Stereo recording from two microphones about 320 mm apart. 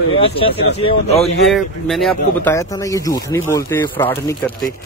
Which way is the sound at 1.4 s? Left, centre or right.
Centre.